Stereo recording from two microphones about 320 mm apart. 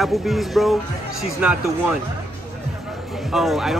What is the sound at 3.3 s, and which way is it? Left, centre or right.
Speech, centre.